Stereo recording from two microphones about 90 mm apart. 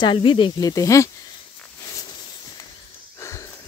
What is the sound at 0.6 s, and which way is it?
Speech, 40° left (ahead or behind).